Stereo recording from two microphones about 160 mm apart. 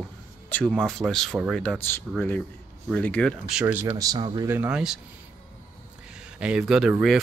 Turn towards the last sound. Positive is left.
turn(degrees=0)  # may be behind; listen again after turning